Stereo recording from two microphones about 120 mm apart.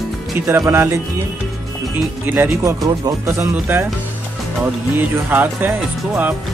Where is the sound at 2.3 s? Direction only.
20° right (ahead or behind).